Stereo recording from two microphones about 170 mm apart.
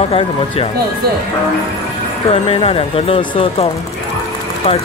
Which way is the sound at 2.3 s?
35° left (ahead or behind).